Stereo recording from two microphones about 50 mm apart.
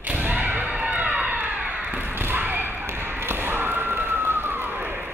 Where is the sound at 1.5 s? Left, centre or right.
Right.